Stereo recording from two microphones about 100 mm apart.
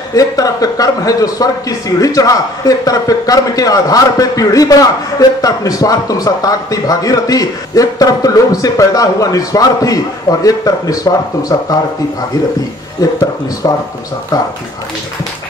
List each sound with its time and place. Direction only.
0.1 s a man's voice: 35° left (ahead or behind)
13.0 s a man's voice: 35° left (ahead or behind)